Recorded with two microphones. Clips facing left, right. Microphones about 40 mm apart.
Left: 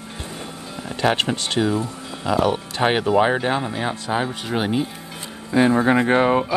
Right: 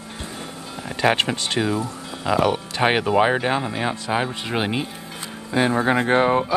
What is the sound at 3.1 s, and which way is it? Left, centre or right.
Speech, centre.